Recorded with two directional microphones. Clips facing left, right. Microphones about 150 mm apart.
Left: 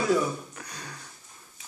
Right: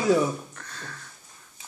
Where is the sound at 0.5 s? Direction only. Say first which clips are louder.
Even; 15° left (ahead or behind).